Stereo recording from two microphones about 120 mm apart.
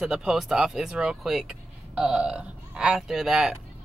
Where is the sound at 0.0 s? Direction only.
5° right (ahead or behind).